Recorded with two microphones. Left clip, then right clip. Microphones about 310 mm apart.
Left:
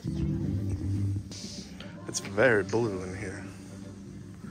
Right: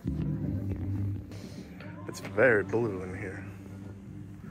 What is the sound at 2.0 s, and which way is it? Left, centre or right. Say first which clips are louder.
Speech: even; centre.